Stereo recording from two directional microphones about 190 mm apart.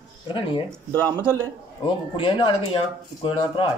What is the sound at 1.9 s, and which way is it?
Speech, 25° left (ahead or behind).